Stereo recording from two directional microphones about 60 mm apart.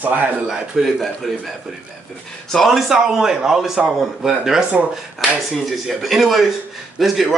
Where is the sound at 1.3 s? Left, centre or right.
Centre.